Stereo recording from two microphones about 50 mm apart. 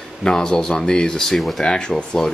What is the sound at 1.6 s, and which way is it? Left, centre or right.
Speech, centre.